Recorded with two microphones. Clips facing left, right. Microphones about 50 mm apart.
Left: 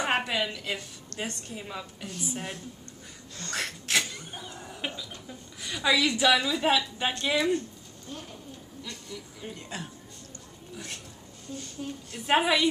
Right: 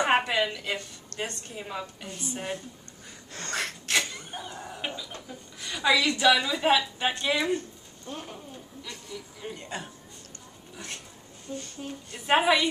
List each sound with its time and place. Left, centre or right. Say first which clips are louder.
0.2 s a woman's voice: right 3 dB; centre
3.5 s a sound: right 1 dB; centre
4.6 s chicken: even; centre
5.6 s a woman's voice: right 1 dB; centre
8.1 s speech: right 3 dB; right
8.8 s speech: even; centre
11.5 s a woman's voice: even; centre